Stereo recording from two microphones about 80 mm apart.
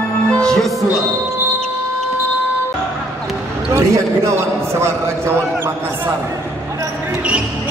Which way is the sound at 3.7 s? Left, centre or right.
Right.